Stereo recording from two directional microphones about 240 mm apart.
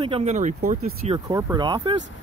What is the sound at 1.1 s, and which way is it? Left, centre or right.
Speech, centre.